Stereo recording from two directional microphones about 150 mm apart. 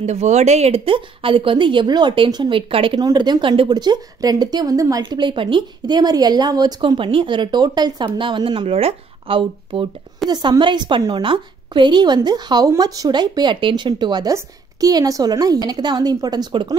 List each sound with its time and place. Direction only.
0.0 s a woman's voice: 50° right (ahead or behind); by 16.7 s 25° right (ahead or behind)